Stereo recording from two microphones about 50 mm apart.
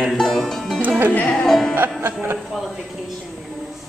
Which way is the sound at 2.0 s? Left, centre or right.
Right.